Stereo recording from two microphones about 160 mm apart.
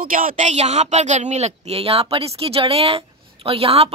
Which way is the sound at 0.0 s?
60° right (ahead or behind).